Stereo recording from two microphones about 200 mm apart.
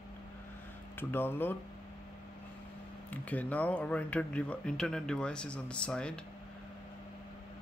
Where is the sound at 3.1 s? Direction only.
10° left (ahead or behind).